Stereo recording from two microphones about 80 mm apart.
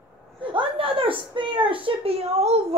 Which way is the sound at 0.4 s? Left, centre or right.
Right.